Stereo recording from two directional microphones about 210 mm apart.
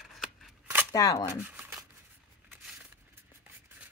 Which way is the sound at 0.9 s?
15° left (ahead or behind).